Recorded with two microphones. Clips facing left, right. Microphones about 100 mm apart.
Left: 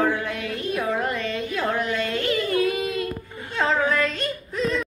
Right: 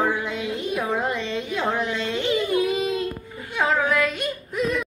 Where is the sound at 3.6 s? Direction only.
5° right (ahead or behind).